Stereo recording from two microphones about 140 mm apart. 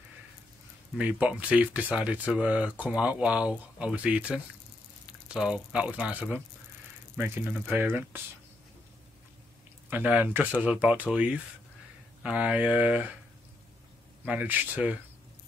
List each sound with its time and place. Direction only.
1.2 s speech: 10° right (ahead or behind)
9.8 s speech: 10° right (ahead or behind)
14.2 s speech: 10° right (ahead or behind)